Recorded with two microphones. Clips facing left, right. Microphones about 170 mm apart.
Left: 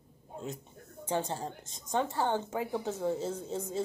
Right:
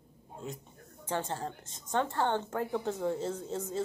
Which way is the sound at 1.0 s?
15° left (ahead or behind).